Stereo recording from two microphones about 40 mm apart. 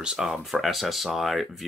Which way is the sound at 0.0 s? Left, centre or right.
Centre.